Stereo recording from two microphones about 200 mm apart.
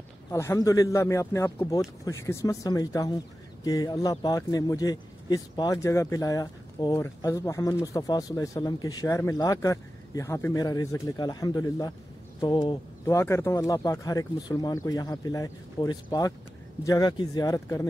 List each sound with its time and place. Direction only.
0.3 s speech: 15° left (ahead or behind)